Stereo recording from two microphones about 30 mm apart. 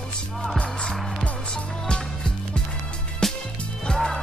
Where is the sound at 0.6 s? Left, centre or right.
Left.